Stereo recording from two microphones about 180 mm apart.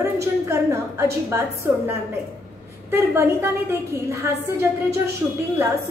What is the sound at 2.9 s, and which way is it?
A woman's voice, 15° right (ahead or behind).